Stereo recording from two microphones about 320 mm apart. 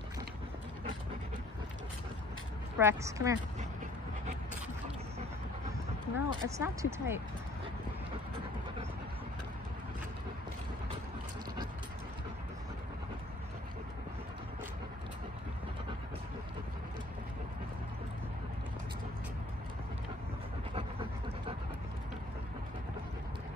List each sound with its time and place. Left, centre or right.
2.8 s speech: centre
6.1 s speech: centre
20.7 s dog: centre